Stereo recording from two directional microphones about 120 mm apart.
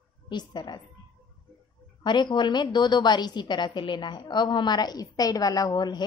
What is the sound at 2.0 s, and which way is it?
A woman's voice, 40° left (ahead or behind).